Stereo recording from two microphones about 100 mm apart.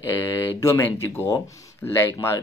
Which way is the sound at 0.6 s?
25° left (ahead or behind).